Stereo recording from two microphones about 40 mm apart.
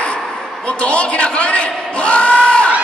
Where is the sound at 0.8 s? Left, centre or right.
Left.